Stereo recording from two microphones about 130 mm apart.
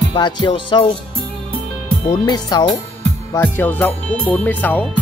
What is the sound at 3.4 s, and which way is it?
Speech, 15° left (ahead or behind).